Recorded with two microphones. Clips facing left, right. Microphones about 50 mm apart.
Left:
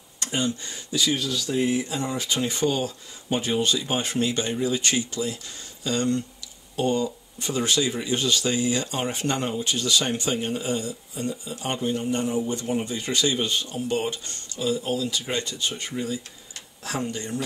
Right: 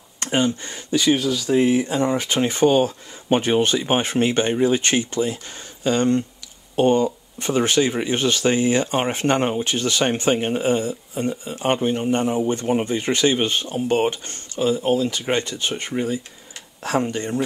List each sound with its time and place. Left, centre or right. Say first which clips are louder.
0.2 s speech: right 6 dB; right